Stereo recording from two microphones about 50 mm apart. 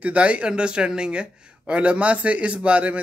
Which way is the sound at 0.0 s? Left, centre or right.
Right.